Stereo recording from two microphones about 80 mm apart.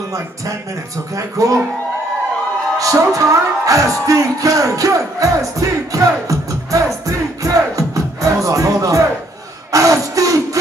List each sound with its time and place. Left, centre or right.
1.1 s music: right
2.8 s music: right
9.7 s a sound: right